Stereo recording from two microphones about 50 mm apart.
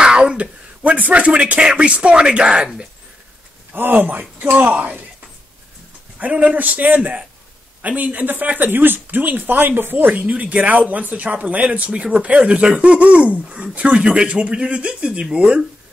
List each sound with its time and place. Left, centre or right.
0.0 s speech: centre
3.7 s speech: right
6.1 s speech: right